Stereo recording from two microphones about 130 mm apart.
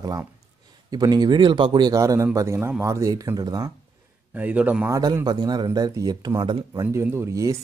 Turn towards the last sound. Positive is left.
turn(degrees=-25)  # may be behind; listen again after turning